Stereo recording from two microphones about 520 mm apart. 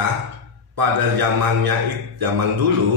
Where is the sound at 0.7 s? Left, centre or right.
Right.